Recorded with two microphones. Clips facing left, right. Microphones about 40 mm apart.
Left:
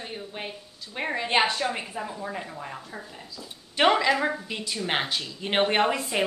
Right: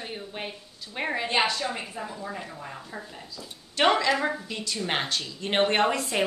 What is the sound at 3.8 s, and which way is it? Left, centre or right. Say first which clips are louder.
A woman's voice: left 1 dB; centre.